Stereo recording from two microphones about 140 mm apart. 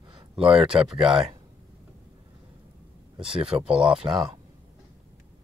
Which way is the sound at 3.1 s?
40° right (ahead or behind).